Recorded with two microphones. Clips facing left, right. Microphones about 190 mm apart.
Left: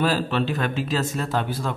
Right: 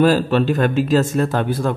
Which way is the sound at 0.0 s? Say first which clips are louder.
Right 8 dB; 45° right (ahead or behind).